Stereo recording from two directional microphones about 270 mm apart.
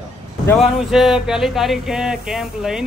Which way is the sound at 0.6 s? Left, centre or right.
Centre.